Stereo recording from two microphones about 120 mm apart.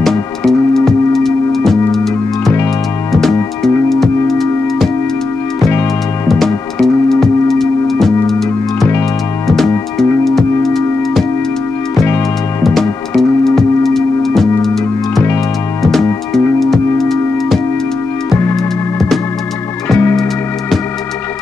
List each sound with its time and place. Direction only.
0.0 s music: 5° left (ahead or behind)
3.1 s music: centre (ahead or behind)
6.2 s music: centre (ahead or behind)
12.6 s music: centre (ahead or behind)
16.5 s music: centre (ahead or behind)